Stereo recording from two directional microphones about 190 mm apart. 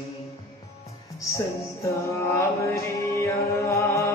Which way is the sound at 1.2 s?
15° left (ahead or behind).